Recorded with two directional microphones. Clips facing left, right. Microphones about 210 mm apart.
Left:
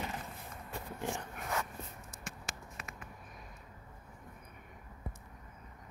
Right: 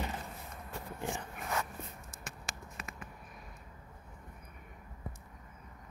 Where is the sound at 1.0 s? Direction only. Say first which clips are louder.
Even; centre (ahead or behind).